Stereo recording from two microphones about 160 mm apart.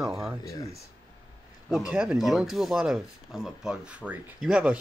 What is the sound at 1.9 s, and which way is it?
Speech, 5° right (ahead or behind).